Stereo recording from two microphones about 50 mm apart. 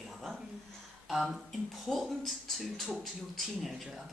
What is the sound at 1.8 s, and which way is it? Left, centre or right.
A woman's voice, centre.